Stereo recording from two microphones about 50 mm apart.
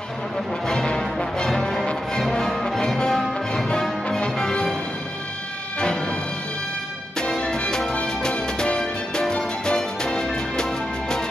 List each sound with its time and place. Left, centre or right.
0.7 s music: centre
5.8 s music: centre
7.2 s music: centre